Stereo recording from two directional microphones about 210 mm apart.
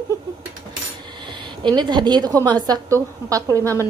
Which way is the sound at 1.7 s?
20° right (ahead or behind).